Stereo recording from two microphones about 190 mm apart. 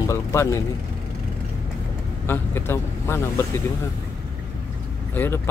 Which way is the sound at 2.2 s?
10° left (ahead or behind).